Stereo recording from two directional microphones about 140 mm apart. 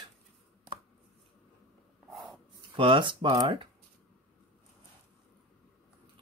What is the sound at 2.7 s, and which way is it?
Speech, 40° right (ahead or behind).